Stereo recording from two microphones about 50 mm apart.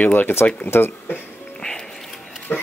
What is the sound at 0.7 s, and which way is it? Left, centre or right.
Speech, left.